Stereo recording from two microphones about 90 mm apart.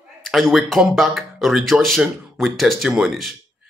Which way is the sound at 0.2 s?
Centre (ahead or behind).